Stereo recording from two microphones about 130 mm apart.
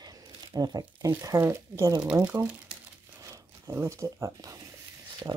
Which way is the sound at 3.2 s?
20° right (ahead or behind).